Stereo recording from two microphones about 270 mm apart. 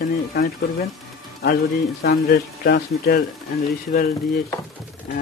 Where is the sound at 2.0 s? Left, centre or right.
Left.